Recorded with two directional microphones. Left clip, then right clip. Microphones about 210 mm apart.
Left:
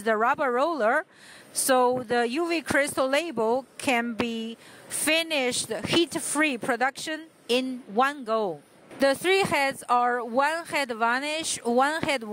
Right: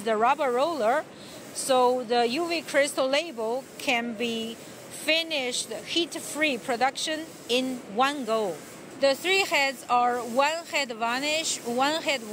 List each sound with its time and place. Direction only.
0.0 s speech: 50° left (ahead or behind)